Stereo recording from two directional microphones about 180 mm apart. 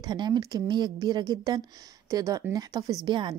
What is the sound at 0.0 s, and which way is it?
A woman's voice, 25° right (ahead or behind).